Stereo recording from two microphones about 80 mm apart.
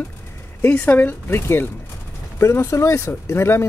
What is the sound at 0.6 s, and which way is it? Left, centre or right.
Speech, centre.